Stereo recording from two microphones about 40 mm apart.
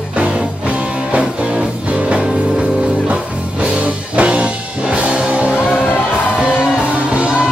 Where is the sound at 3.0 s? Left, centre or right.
Right.